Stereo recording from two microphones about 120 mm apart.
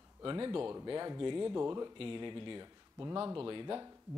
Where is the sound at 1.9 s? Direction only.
45° right (ahead or behind).